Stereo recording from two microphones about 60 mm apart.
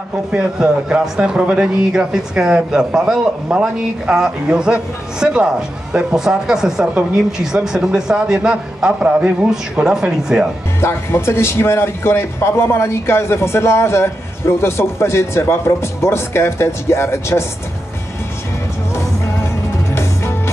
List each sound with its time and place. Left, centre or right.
0.3 s speech: centre
10.8 s a man's voice: left
18.9 s music: left